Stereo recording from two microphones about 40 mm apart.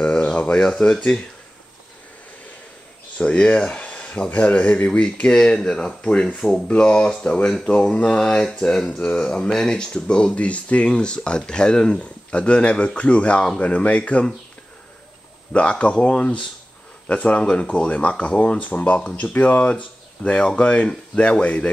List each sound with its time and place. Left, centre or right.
0.0 s a sound: left
0.7 s speech: left
3.2 s speech: left
5.2 s speech: centre
8.2 s speech: centre
8.8 s speech: left
10.3 s speech: left
10.9 s speech: left
15.5 s speech: left